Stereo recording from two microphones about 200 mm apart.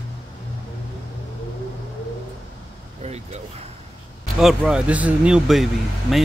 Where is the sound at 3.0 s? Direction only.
35° right (ahead or behind).